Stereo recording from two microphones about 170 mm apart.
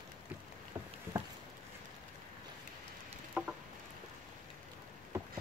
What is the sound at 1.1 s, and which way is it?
Patter, 20° right (ahead or behind).